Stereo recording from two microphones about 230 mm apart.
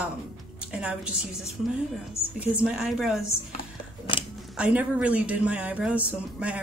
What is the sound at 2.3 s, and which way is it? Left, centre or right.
Speech, centre.